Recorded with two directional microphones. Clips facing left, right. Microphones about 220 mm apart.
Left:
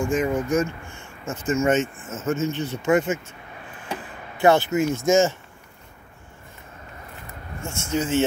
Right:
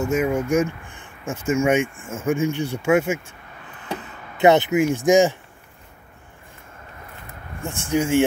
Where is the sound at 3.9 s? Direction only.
20° right (ahead or behind).